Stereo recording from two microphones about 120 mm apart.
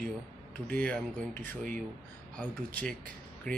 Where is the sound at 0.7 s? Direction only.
10° left (ahead or behind).